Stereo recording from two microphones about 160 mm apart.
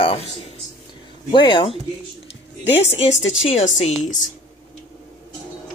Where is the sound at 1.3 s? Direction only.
30° left (ahead or behind).